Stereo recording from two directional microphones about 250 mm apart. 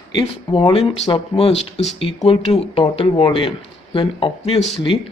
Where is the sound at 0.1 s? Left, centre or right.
Centre.